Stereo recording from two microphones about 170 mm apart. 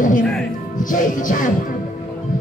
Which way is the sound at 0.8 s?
50° left (ahead or behind).